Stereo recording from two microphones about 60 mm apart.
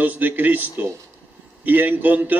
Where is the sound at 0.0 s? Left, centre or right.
Right.